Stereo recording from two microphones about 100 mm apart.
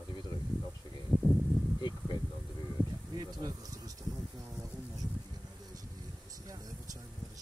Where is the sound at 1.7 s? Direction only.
50° left (ahead or behind).